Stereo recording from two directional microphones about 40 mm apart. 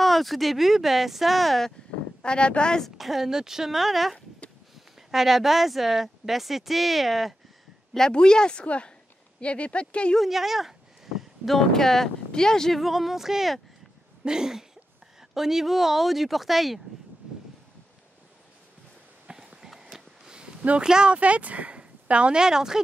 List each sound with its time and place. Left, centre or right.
0.0 s speech: centre
2.2 s speech: left
3.0 s speech: centre
8.1 s speech: left
10.2 s speech: centre
11.4 s speech: centre
12.7 s speech: centre
19.2 s a sound: centre
20.8 s speech: centre
21.1 s speech: right; by 22.8 s centre